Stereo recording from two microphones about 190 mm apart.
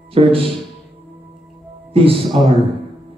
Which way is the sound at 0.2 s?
30° right (ahead or behind).